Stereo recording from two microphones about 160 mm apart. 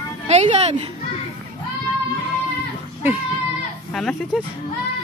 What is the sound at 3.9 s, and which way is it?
Speech, 5° left (ahead or behind).